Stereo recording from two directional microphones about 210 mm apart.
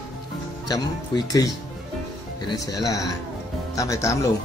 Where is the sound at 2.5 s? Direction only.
15° left (ahead or behind).